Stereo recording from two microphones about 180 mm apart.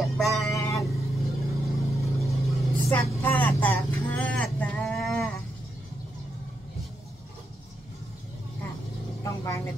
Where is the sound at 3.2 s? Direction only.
10° left (ahead or behind).